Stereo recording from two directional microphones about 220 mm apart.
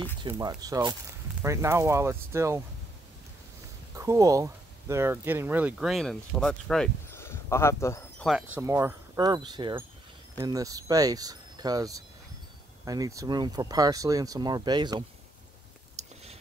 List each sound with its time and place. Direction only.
0.3 s speech: 15° right (ahead or behind)
3.9 s speech: 15° right (ahead or behind); by 8.3 s 10° left (ahead or behind)
8.5 s speech: 10° right (ahead or behind)